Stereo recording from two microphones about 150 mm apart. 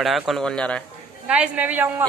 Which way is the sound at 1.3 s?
10° right (ahead or behind).